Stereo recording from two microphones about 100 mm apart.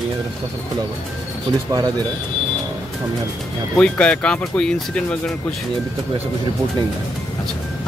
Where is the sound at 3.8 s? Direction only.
10° left (ahead or behind).